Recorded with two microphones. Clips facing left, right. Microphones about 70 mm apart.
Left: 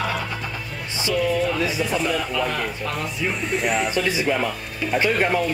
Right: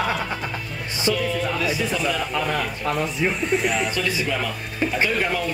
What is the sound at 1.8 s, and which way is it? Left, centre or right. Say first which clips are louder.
Speech: left 1 dB; centre.